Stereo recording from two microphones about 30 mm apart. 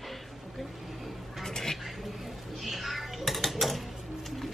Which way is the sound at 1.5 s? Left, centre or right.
Centre.